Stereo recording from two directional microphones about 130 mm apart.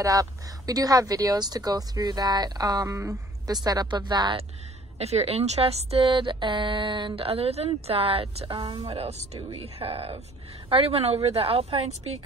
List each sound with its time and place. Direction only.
0.0 s speech: 25° right (ahead or behind)
4.9 s speech: 55° right (ahead or behind)